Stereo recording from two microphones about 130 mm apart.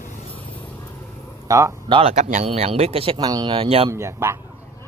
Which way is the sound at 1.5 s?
25° right (ahead or behind).